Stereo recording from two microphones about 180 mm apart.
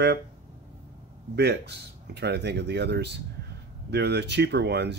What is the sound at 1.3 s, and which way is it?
Speech, 70° right (ahead or behind).